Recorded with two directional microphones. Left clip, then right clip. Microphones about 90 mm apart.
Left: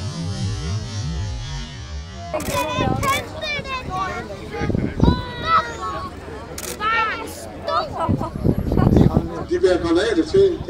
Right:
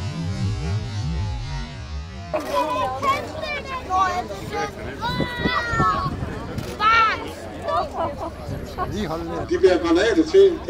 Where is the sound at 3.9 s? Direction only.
40° right (ahead or behind).